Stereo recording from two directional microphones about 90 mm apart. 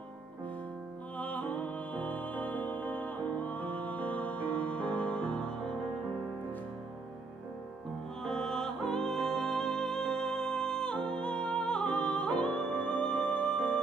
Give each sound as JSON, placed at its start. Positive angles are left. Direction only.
{"t": 1.1, "sound": "music", "side_deg": 15}
{"t": 8.2, "sound": "music", "side_deg": 5}